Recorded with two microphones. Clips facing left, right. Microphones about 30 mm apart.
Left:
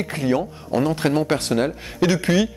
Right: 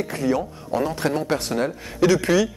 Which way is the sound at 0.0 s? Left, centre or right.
Left.